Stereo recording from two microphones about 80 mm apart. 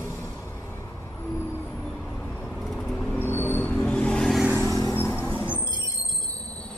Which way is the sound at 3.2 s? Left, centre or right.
Left.